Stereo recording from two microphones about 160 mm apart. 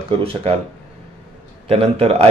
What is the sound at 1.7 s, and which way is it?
Speech, 40° right (ahead or behind).